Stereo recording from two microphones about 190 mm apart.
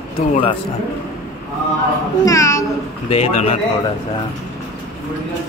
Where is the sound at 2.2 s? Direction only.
15° left (ahead or behind).